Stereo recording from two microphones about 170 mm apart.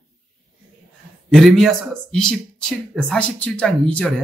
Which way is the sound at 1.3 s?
Centre (ahead or behind).